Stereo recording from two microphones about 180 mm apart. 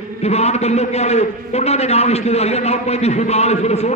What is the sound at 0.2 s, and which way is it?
A man's voice, 35° left (ahead or behind).